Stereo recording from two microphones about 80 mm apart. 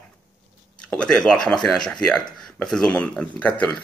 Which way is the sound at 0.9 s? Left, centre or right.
Centre.